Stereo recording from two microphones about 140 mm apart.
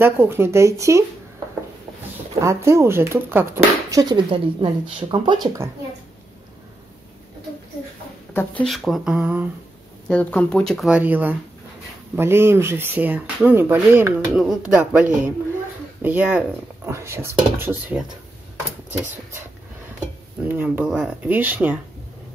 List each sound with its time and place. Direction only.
0.0 s speech: 15° right (ahead or behind)
2.4 s speech: 20° right (ahead or behind)
4.0 s speech: 35° right (ahead or behind)
8.3 s speech: 15° left (ahead or behind)
8.6 s a sound: centre (ahead or behind)
10.0 s a sound: 10° left (ahead or behind)
10.9 s speech: 10° right (ahead or behind)
14.3 s a sound: 5° right (ahead or behind)
14.8 s speech: 10° right (ahead or behind)
20.4 s speech: 15° right (ahead or behind)